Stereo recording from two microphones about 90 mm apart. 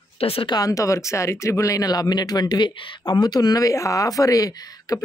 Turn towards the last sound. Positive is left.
turn(degrees=45)  # may be behind; listen again after turning